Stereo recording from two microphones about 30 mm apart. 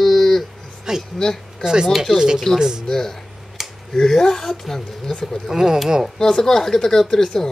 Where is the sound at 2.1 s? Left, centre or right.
Right.